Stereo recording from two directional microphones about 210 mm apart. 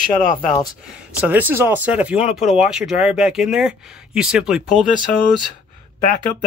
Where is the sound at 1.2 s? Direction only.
10° right (ahead or behind).